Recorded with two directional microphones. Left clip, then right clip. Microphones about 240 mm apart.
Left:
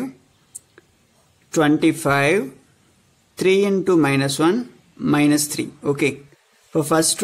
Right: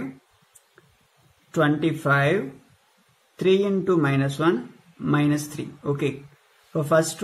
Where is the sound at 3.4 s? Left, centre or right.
Left.